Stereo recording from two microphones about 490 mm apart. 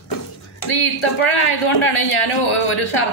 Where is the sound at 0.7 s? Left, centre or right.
Left.